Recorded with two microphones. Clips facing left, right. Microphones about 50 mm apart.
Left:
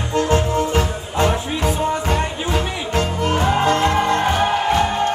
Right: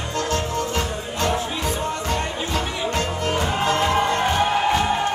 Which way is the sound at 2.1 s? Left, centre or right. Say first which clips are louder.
Left 4 dB; centre.